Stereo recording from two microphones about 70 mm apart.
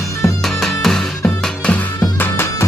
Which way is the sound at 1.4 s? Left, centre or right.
Centre.